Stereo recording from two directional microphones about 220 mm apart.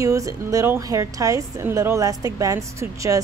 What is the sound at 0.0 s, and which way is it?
A woman's voice, 15° right (ahead or behind).